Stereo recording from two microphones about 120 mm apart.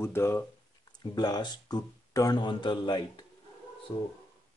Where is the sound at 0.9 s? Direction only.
35° left (ahead or behind).